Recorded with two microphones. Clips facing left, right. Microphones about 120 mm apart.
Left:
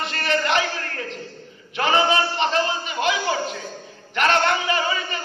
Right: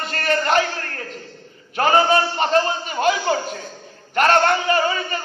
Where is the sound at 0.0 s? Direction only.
45° right (ahead or behind).